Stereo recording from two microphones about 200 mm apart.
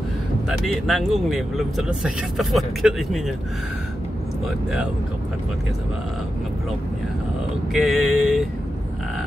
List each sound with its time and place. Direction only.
0.5 s speech: centre (ahead or behind)
7.7 s speech: centre (ahead or behind)